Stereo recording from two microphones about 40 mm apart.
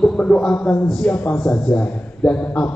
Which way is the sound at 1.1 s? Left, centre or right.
Left.